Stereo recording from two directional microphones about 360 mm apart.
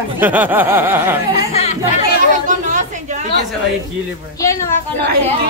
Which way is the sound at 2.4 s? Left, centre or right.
Right.